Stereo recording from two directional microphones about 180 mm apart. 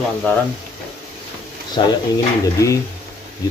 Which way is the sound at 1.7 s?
20° left (ahead or behind).